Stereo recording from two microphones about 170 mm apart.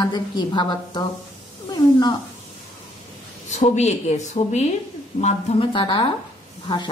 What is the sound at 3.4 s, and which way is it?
A woman's voice, 40° left (ahead or behind).